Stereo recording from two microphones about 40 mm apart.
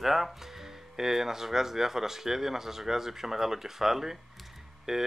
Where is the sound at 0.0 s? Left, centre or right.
Centre.